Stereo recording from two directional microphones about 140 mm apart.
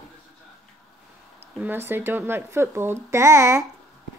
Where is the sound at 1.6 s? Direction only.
15° right (ahead or behind).